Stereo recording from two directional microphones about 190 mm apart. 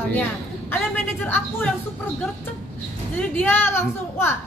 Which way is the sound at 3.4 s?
10° left (ahead or behind).